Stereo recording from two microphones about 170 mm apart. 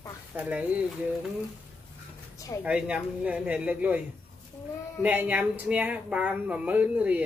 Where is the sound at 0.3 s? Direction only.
10° right (ahead or behind).